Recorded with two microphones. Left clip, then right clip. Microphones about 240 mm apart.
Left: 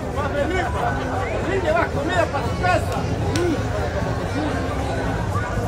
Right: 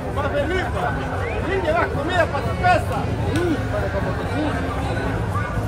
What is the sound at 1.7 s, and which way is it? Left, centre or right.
Speech, centre.